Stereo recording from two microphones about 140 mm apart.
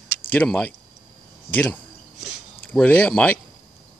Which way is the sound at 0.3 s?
10° left (ahead or behind).